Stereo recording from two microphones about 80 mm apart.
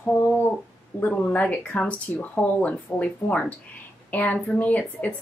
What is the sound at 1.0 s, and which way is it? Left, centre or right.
A woman's voice, centre.